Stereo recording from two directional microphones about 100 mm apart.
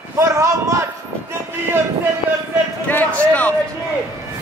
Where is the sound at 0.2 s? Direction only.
30° right (ahead or behind).